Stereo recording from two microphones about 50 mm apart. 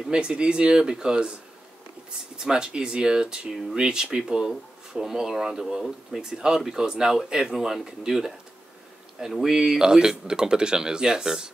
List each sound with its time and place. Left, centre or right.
0.1 s speech: centre
2.3 s speech: centre
9.5 s speech: centre